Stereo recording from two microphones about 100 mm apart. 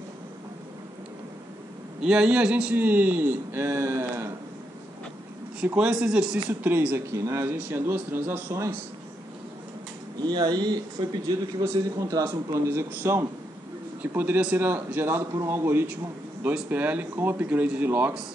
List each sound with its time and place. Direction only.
2.0 s a man's voice: 10° right (ahead or behind); by 4.3 s 25° right (ahead or behind)
5.8 s speech: 10° right (ahead or behind)
6.6 s a man's voice: 20° right (ahead or behind)
10.1 s a man's voice: 45° right (ahead or behind); by 18.1 s 20° right (ahead or behind)